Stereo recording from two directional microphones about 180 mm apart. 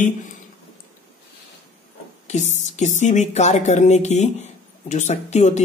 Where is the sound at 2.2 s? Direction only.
40° left (ahead or behind).